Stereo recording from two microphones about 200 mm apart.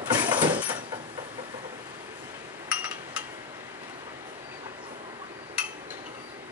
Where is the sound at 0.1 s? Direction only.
20° right (ahead or behind).